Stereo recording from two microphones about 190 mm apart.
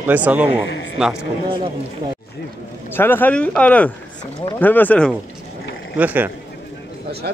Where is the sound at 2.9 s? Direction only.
10° left (ahead or behind).